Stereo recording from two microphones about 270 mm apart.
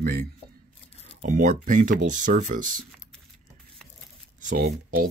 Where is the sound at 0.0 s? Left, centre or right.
Right.